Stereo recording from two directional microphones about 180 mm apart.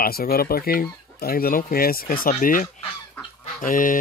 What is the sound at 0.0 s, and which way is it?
Speech, 55° left (ahead or behind).